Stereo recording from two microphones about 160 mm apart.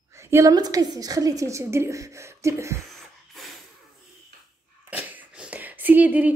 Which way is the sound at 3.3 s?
Centre (ahead or behind).